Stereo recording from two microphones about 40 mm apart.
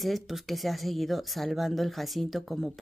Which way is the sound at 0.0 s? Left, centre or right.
Centre.